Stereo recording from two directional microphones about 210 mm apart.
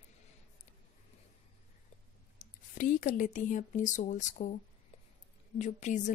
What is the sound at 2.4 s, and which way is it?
Speech, 40° left (ahead or behind).